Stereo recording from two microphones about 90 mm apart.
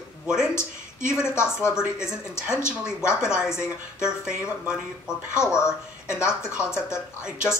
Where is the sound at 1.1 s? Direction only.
30° left (ahead or behind).